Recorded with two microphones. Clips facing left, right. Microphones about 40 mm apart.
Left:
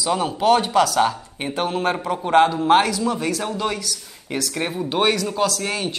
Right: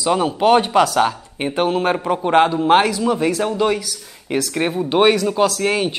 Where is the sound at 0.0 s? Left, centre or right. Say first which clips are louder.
Right 4 dB; centre.